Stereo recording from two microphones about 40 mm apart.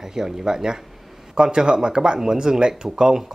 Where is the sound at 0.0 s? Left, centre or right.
Centre.